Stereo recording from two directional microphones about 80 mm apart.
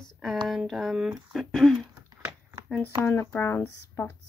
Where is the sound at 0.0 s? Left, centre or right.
Centre.